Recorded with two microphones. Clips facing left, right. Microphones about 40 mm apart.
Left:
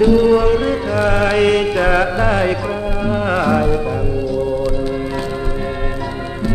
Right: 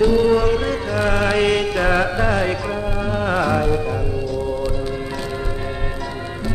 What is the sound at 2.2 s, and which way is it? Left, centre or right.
Music, centre.